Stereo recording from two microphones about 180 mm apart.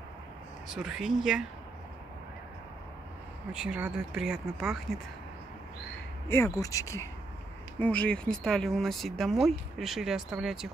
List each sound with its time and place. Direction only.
0.7 s speech: 5° right (ahead or behind)
3.5 s speech: 5° right (ahead or behind)
6.2 s speech: 15° left (ahead or behind)
7.8 s speech: 5° left (ahead or behind)